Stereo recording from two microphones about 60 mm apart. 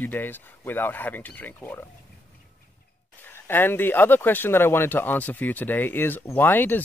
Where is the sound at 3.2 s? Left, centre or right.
Left.